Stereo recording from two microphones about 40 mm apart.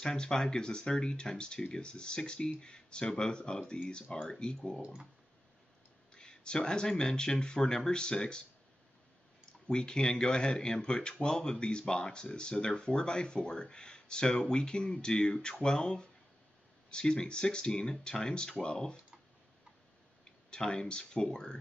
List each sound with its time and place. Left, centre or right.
0.0 s speech: centre
6.1 s speech: left
9.5 s speech: centre
20.4 s speech: centre